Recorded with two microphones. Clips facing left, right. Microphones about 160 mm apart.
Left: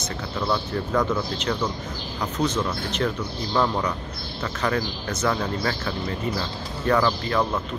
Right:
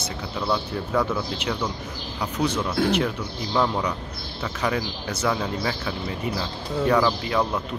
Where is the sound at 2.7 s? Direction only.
90° right.